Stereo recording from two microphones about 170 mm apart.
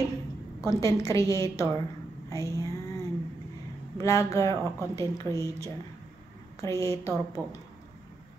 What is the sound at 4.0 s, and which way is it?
A woman's voice, 20° left (ahead or behind).